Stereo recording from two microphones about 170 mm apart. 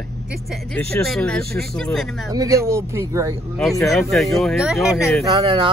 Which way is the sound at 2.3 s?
20° right (ahead or behind).